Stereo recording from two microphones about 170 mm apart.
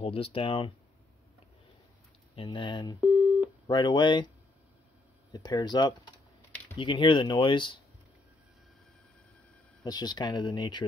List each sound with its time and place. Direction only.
0.0 s speech: 35° left (ahead or behind)
2.3 s speech: 30° left (ahead or behind)
5.3 s speech: 25° left (ahead or behind)
9.8 s speech: 25° left (ahead or behind)